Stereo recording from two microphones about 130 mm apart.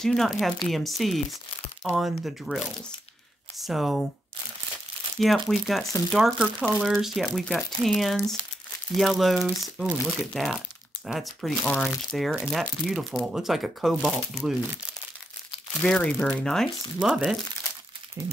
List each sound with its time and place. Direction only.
0.0 s speech: centre (ahead or behind)
5.2 s speech: centre (ahead or behind)
15.8 s speech: 10° left (ahead or behind)
17.0 s speech: 5° right (ahead or behind)
18.2 s speech: 20° right (ahead or behind)